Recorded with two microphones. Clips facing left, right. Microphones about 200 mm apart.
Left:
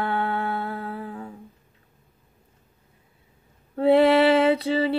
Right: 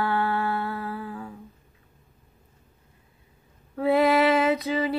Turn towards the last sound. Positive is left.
turn(degrees=30)  # may be behind; listen again after turning